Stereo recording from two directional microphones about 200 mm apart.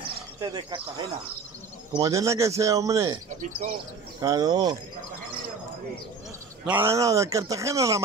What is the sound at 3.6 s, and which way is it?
Speech, 35° right (ahead or behind).